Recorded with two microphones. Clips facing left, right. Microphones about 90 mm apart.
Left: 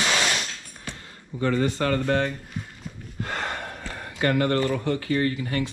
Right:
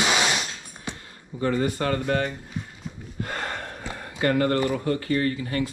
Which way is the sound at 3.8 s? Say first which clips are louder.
Right 1 dB; 25° right (ahead or behind).